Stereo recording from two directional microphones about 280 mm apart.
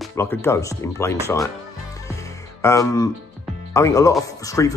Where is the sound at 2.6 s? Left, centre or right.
Centre.